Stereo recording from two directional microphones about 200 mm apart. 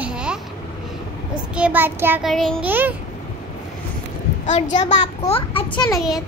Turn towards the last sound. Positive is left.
turn(degrees=0)  # may be behind; listen again after turning